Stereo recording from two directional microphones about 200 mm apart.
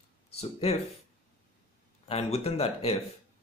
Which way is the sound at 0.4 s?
30° left (ahead or behind).